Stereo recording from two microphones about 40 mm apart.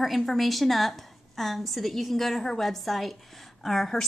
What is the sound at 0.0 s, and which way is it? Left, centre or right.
A woman's voice, centre.